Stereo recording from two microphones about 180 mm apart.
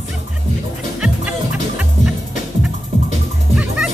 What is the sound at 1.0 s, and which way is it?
Music, 5° right (ahead or behind).